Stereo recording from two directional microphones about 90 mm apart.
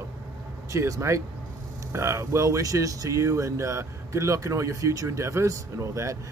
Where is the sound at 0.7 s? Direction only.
35° right (ahead or behind).